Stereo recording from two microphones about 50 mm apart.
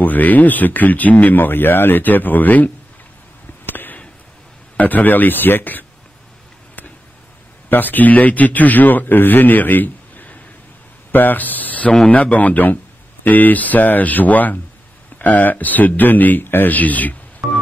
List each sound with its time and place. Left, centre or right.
0.0 s speech: left
3.6 s a sound: left
4.7 s speech: left
7.7 s speech: left
11.1 s a sound: left
12.1 s speech: left